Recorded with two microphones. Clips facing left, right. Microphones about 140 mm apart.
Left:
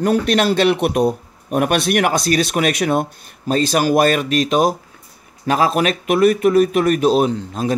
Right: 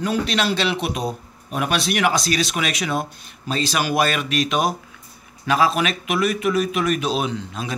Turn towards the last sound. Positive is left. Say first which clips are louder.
# left 8 dB
turn(degrees=45)  # may be behind; listen again after turning